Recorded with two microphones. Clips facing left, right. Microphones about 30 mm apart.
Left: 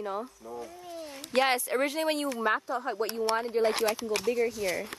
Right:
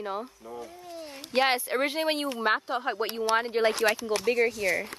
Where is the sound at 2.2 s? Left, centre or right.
Right.